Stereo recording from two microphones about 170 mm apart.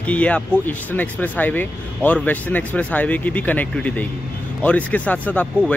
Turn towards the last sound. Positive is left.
turn(degrees=10)  # may be behind; listen again after turning